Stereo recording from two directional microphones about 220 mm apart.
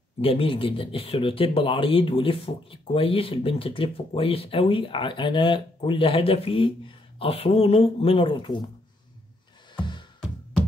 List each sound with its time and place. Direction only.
0.2 s speech: 25° left (ahead or behind)
9.8 s music: 20° left (ahead or behind)